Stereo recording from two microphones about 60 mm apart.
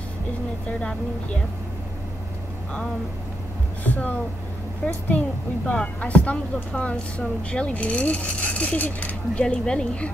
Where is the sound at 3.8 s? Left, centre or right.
Left.